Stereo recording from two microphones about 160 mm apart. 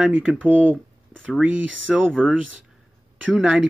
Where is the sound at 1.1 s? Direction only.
Centre (ahead or behind).